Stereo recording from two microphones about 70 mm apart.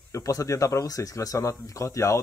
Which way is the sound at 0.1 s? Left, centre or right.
Left.